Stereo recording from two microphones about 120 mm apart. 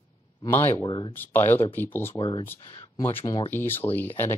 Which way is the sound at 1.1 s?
15° left (ahead or behind).